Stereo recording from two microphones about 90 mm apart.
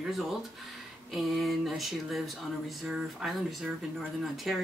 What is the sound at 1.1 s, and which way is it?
Speech, centre (ahead or behind).